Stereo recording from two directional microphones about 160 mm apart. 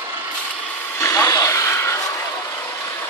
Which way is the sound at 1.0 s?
20° left (ahead or behind).